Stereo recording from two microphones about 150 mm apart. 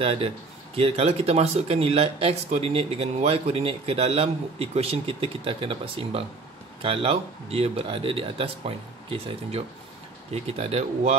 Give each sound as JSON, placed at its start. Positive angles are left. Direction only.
{"t": 0.0, "sound": "speech", "side_deg": -40}